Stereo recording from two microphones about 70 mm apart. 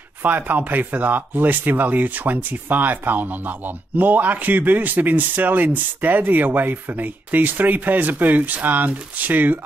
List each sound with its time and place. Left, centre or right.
0.2 s speech: right